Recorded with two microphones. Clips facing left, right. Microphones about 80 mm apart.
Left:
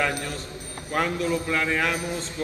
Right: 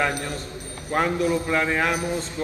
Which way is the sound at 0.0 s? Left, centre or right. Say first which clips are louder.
Right 2 dB; right.